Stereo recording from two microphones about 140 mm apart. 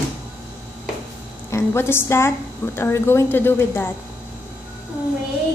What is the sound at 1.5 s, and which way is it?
A woman's voice, 15° left (ahead or behind).